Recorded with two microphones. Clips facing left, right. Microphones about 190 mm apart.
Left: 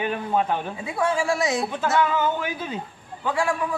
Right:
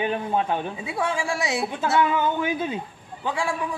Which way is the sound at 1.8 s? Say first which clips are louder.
Right 2 dB; 15° right (ahead or behind).